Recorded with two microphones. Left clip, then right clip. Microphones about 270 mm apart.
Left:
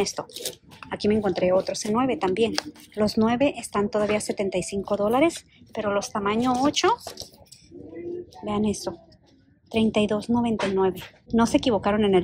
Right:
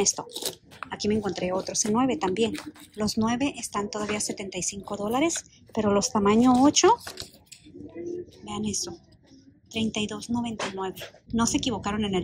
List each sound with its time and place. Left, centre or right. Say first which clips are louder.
0.0 s speech: right 1 dB; centre
8.5 s speech: left 6 dB; centre